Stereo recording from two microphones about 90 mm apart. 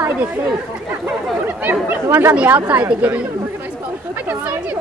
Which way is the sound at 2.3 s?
15° right (ahead or behind).